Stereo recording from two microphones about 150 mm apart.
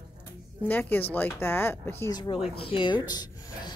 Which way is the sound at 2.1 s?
30° left (ahead or behind).